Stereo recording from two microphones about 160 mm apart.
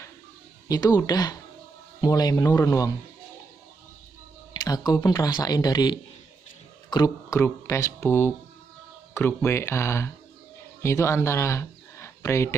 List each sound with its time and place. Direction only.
0.7 s speech: 25° left (ahead or behind)
4.6 s speech: 25° left (ahead or behind)